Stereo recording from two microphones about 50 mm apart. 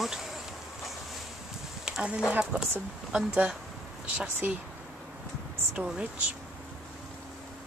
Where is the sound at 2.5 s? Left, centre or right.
Right.